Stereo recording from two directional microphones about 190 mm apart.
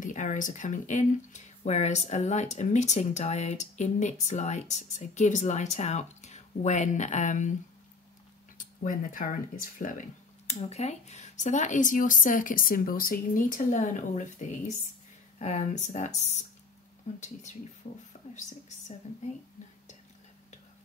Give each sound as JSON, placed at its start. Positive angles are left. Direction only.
{"t": 0.0, "sound": "speech", "side_deg": 40}
{"t": 8.5, "sound": "speech", "side_deg": 45}
{"t": 17.2, "sound": "speech", "side_deg": 40}